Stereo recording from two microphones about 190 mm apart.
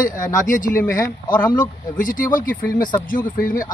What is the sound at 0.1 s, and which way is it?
Speech, 45° left (ahead or behind).